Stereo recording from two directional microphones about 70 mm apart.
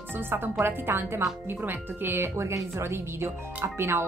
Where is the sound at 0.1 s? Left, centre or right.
Right.